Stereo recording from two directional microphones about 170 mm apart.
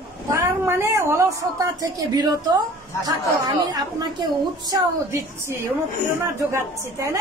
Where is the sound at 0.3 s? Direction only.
15° right (ahead or behind).